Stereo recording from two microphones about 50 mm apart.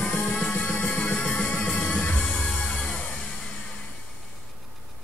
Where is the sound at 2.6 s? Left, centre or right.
Centre.